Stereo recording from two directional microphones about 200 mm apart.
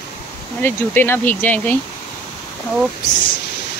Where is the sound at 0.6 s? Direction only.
10° left (ahead or behind).